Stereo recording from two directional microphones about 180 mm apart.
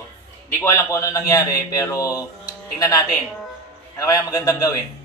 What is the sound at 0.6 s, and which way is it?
Speech, 15° left (ahead or behind).